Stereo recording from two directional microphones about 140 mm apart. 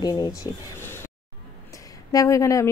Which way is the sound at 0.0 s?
25° left (ahead or behind).